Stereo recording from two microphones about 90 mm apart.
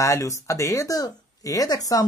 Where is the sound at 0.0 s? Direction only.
35° left (ahead or behind).